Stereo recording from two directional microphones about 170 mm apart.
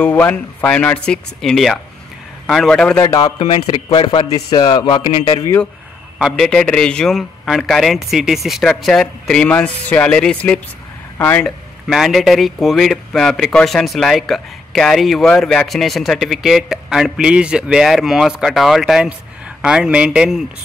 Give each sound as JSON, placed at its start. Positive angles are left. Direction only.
{"t": 0.0, "sound": "speech", "side_deg": 10}
{"t": 3.0, "sound": "a man's voice", "side_deg": 20}
{"t": 6.1, "sound": "speech", "side_deg": 0}
{"t": 11.9, "sound": "speech", "side_deg": 0}